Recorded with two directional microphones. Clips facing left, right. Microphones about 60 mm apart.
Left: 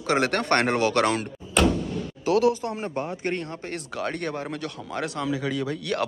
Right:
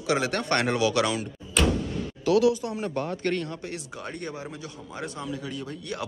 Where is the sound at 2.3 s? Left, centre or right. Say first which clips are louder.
Even; left.